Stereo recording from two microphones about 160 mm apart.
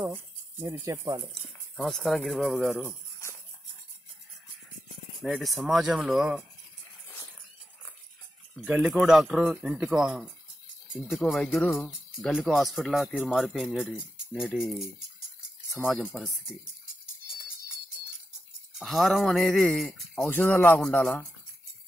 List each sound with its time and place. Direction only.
0.0 s speech: 10° right (ahead or behind)
1.2 s speech: centre (ahead or behind)
2.8 s a sound: 15° left (ahead or behind)
5.2 s speech: centre (ahead or behind)
8.6 s speech: 10° right (ahead or behind)
15.9 s speech: centre (ahead or behind)
18.8 s speech: centre (ahead or behind)
20.2 s a man's voice: 10° left (ahead or behind)